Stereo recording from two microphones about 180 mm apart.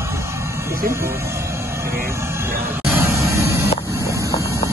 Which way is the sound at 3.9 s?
15° right (ahead or behind).